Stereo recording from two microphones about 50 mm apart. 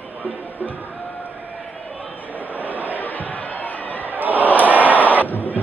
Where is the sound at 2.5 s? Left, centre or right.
Right.